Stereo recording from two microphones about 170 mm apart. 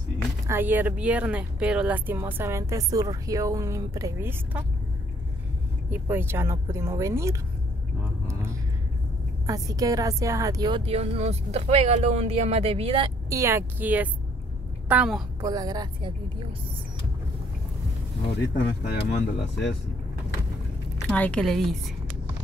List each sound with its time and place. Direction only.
0.5 s speech: 10° right (ahead or behind)
5.9 s speech: 15° right (ahead or behind)
9.5 s a woman's voice: 20° right (ahead or behind)
10.9 s speech: 40° right (ahead or behind)
13.3 s a woman's voice: 15° right (ahead or behind)
15.4 s a woman's voice: 20° right (ahead or behind)
19.0 s speech: 80° left
21.1 s a woman's voice: 5° left (ahead or behind)